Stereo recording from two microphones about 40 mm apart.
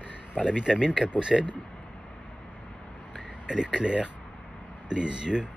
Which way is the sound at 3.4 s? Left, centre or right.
Right.